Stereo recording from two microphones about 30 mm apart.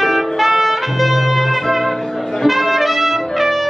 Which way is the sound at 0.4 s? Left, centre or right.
Centre.